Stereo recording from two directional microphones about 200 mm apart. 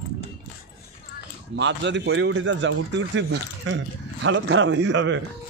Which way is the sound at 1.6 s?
60° right (ahead or behind).